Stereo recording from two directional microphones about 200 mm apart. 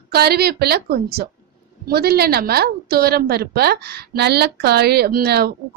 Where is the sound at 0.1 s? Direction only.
50° right (ahead or behind).